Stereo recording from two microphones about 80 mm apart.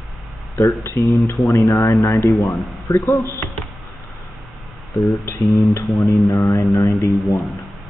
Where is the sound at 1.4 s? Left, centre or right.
Centre.